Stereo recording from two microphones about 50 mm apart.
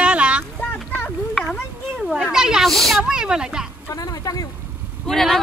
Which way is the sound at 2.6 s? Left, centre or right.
Centre.